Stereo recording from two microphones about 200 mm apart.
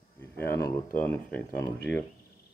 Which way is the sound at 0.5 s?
15° left (ahead or behind).